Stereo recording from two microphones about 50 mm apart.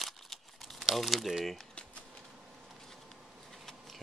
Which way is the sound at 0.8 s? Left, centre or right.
Centre.